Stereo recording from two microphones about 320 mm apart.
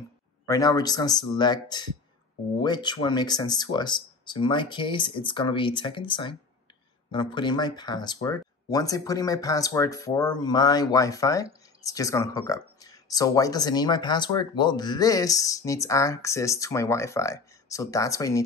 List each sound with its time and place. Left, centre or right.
0.5 s speech: centre